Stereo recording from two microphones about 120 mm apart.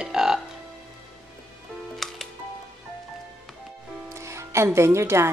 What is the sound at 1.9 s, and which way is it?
Music, centre (ahead or behind).